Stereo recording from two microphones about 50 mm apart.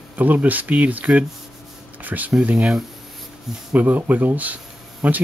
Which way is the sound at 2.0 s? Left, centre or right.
Right.